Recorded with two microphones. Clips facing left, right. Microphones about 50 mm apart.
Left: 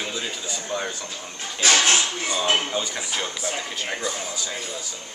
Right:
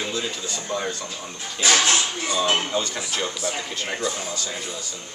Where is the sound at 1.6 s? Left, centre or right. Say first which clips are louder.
Even; left.